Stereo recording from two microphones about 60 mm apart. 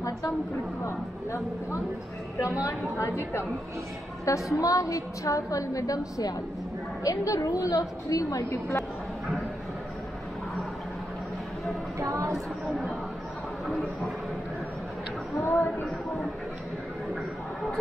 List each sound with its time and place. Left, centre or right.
0.8 s speech: left
4.3 s a woman's voice: left
8.5 s speech: left
12.0 s a woman's voice: right
15.4 s speech: left